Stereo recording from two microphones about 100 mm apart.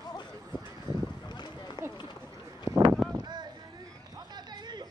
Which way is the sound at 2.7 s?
35° right (ahead or behind).